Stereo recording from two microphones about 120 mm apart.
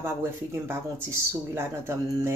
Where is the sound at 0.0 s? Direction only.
20° right (ahead or behind).